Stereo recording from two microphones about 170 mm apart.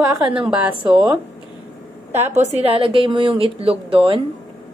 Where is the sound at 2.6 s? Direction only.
35° right (ahead or behind).